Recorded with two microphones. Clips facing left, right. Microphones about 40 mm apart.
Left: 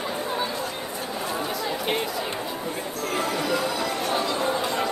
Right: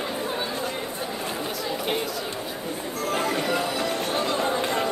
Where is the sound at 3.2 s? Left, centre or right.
Right.